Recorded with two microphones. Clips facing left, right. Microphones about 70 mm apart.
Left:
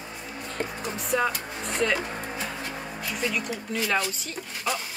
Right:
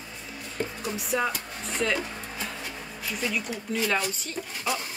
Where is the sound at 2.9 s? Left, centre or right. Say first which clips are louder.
Left 1 dB; centre.